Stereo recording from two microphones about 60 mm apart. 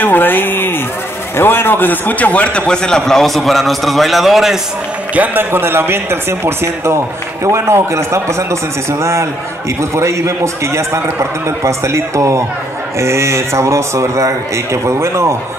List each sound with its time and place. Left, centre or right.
0.0 s a sound: left
1.3 s a man's voice: left; by 4.6 s centre
5.1 s a man's voice: right